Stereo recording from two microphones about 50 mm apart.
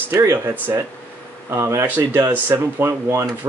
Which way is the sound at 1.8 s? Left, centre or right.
Right.